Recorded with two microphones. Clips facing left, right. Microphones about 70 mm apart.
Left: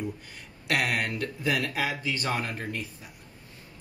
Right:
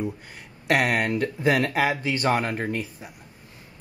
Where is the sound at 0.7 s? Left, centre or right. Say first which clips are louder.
Right 6 dB; right.